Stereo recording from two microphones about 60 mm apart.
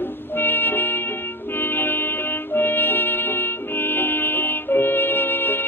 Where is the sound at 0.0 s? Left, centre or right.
Left.